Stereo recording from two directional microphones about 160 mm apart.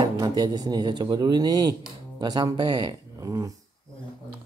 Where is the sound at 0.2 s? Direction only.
25° right (ahead or behind).